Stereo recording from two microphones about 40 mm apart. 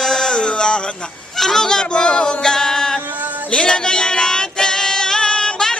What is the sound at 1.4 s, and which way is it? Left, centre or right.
Yodeling, centre.